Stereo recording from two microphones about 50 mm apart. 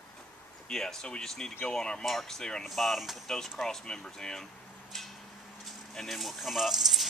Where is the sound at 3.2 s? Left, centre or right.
Centre.